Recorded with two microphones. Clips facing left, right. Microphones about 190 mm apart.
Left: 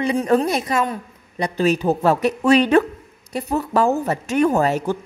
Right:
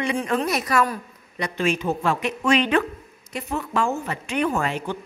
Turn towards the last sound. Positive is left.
turn(degrees=40)  # may be behind; listen again after turning